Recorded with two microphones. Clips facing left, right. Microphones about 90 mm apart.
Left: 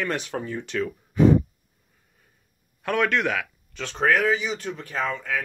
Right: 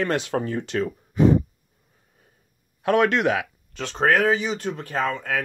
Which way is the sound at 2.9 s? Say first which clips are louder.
Right 4 dB; 20° right (ahead or behind).